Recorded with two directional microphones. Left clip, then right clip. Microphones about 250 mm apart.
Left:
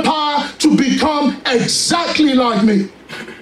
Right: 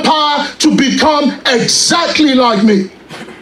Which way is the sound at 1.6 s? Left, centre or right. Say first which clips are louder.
Right 6 dB; right.